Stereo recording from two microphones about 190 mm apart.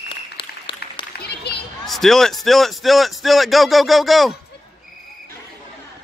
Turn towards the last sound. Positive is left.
turn(degrees=0)  # may be behind; listen again after turning